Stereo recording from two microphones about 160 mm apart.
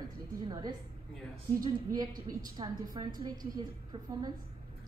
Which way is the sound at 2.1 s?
60° right (ahead or behind).